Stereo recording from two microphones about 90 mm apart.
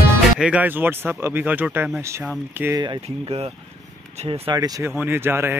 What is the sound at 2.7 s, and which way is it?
Speech, 50° right (ahead or behind).